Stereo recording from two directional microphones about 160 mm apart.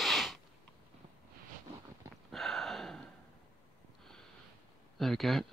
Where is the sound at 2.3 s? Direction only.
Centre (ahead or behind).